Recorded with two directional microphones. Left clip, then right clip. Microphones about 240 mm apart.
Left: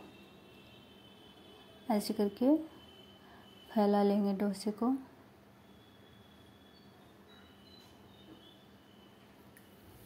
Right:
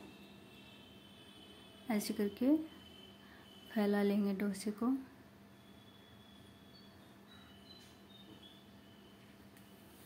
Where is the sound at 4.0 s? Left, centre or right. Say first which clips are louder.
Left 5 dB; centre.